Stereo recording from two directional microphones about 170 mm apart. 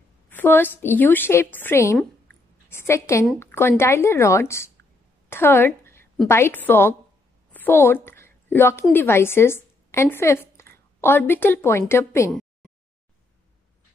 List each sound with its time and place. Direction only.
0.3 s a woman's voice: 10° left (ahead or behind)
2.0 s a sound: 10° left (ahead or behind)
3.3 s a woman's voice: 15° left (ahead or behind)